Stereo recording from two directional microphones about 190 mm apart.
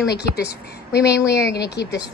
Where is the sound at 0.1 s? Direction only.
60° left (ahead or behind).